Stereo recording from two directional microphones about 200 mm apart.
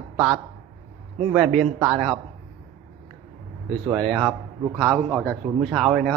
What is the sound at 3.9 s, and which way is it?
A man's voice, centre (ahead or behind).